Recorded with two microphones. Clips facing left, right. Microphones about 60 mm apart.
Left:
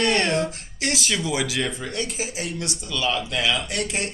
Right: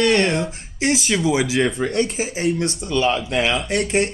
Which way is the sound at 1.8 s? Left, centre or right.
Right.